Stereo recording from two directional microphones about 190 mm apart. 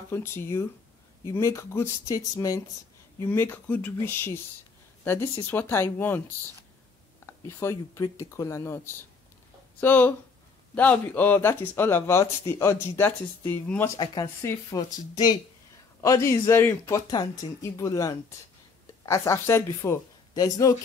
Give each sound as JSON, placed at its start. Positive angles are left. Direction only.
{"t": 0.1, "sound": "speech", "side_deg": 15}
{"t": 13.9, "sound": "speech", "side_deg": 20}